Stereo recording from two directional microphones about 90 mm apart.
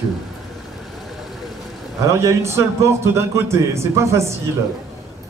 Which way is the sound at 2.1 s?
35° right (ahead or behind).